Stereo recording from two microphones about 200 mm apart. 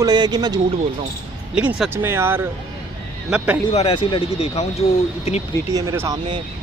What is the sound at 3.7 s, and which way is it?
Speech, 25° left (ahead or behind).